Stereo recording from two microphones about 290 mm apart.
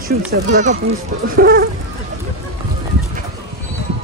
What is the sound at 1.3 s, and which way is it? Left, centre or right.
Chicken, right.